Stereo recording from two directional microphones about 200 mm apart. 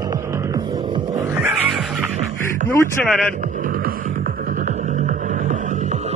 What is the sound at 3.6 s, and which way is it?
Music, 45° right (ahead or behind).